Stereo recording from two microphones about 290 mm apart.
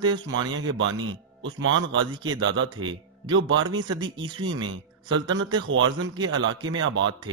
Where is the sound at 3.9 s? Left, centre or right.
Centre.